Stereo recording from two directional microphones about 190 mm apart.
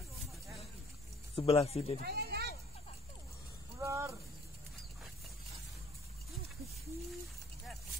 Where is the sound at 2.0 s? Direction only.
55° right (ahead or behind).